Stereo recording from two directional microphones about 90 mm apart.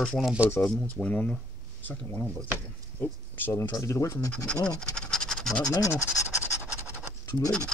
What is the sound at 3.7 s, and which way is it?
Speech, 35° left (ahead or behind).